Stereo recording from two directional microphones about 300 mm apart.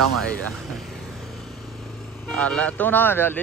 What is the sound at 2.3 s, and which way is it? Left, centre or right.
Speech, centre.